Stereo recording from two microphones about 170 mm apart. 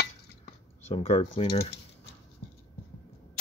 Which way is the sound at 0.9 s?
35° left (ahead or behind).